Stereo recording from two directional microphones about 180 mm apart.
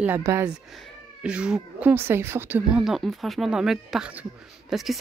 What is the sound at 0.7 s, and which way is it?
A woman's voice, 5° right (ahead or behind).